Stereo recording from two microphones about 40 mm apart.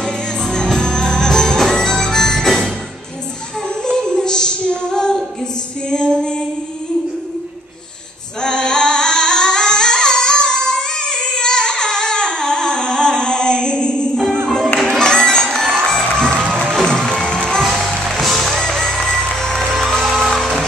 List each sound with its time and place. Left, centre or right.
0.0 s music: centre
3.9 s female singing: centre
8.4 s singing: centre
14.9 s music: centre
17.6 s music: centre